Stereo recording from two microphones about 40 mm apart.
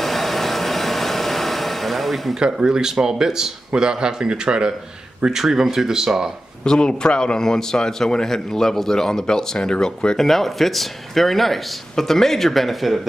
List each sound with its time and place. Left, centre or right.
0.0 s a sound: centre
2.5 s speech: centre
6.6 s speech: left
10.2 s speech: centre